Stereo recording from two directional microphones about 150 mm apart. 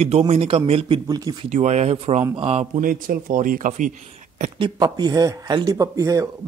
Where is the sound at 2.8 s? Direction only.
65° right (ahead or behind).